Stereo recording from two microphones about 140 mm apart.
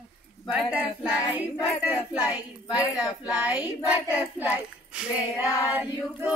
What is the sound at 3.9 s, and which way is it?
Child singing, 10° right (ahead or behind).